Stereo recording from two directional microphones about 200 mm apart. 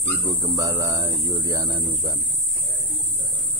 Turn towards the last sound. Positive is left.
turn(degrees=-20)  # may be behind; listen again after turning